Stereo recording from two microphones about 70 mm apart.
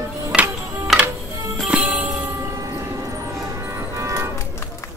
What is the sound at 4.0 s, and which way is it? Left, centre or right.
Music, right.